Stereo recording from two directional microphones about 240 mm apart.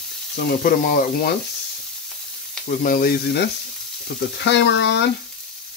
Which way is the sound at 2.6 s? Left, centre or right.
Left.